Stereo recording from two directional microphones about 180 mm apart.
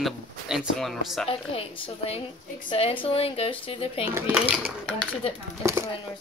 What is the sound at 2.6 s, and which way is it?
Speech, 30° left (ahead or behind).